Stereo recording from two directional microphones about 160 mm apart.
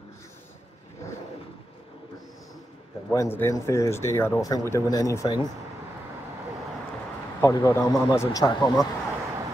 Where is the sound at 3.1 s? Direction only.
15° left (ahead or behind).